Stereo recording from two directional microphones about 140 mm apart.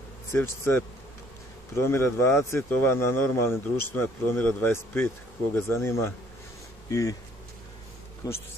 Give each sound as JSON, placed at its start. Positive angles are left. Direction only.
{"t": 0.3, "sound": "speech", "side_deg": 20}
{"t": 8.2, "sound": "speech", "side_deg": 25}